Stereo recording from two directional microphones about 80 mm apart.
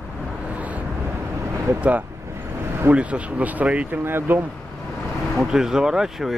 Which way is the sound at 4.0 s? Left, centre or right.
Right.